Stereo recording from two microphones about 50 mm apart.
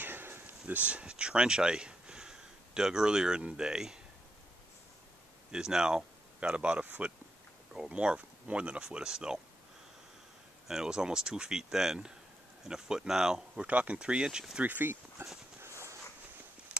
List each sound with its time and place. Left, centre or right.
0.0 s a sound: right; by 3.4 s centre
3.5 s speech: centre
5.5 s speech: centre
7.9 s speech: right
10.7 s speech: centre
13.6 s speech: right
14.6 s speech: right
15.6 s a sound: right